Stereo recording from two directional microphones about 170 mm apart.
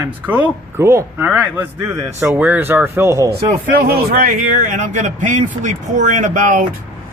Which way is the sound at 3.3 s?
60° right (ahead or behind).